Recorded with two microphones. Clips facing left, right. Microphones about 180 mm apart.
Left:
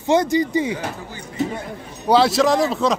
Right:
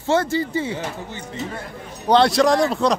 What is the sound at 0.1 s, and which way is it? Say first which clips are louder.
Speech: left 3 dB; 15° left (ahead or behind).